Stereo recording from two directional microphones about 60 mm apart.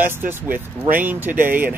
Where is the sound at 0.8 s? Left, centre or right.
Right.